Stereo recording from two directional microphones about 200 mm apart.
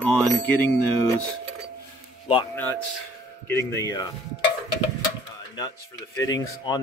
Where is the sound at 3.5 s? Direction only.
15° left (ahead or behind).